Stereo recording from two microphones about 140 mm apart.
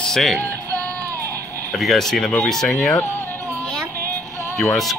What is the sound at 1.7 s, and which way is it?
Speech, centre (ahead or behind).